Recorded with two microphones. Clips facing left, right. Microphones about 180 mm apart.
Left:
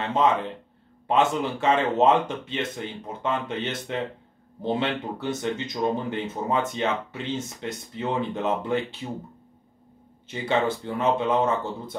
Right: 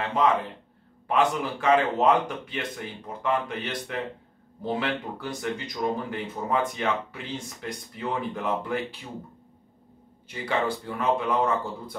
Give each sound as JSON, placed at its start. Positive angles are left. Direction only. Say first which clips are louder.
{"t": 0.0, "sound": "speech", "louder": "left 1 dB", "side_deg": 25}
{"t": 10.2, "sound": "speech", "louder": "left 3 dB", "side_deg": 25}